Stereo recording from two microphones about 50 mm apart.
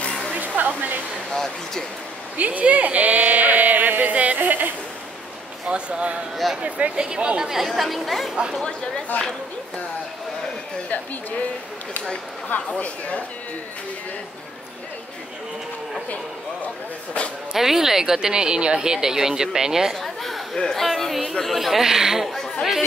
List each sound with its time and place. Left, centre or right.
0.0 s hair dryer: centre
0.4 s hair dryer: right
1.3 s speech: centre
2.3 s speech: right
5.7 s speech: right
6.3 s speech: centre
7.0 s speech: centre
9.1 s speech: left
12.4 s speech: left
17.5 s speech: centre
20.0 s a sound: centre
20.5 s speech: centre
20.8 s speech: centre